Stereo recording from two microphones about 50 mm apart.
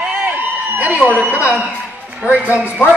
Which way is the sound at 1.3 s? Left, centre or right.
Left.